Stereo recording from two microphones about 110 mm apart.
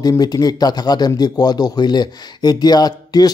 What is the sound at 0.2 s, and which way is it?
Speech, 35° left (ahead or behind).